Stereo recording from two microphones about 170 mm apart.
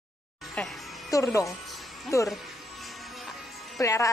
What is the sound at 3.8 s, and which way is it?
Speech, 20° left (ahead or behind).